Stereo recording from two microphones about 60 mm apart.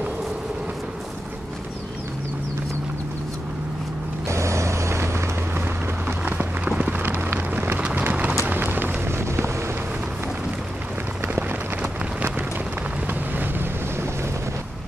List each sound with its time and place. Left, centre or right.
4.3 s vehicle: right
6.0 s a sound: right
7.9 s run: right
11.3 s run: right
13.0 s boat: right